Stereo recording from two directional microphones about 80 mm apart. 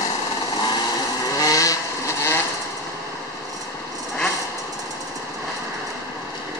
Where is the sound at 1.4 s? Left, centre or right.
Left.